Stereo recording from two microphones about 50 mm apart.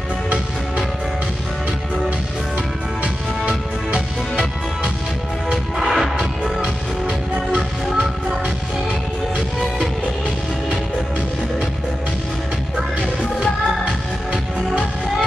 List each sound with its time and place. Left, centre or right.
3.0 s music: right
5.5 s music: centre
7.1 s music: centre